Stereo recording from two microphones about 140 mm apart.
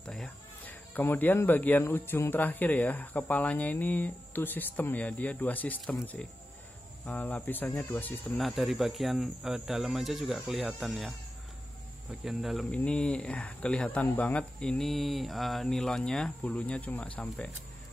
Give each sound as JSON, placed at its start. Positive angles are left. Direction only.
{"t": 0.0, "sound": "speech", "side_deg": 5}
{"t": 8.4, "sound": "speech", "side_deg": 0}